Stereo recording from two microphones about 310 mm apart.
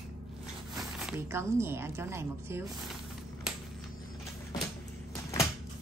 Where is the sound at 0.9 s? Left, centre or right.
Centre.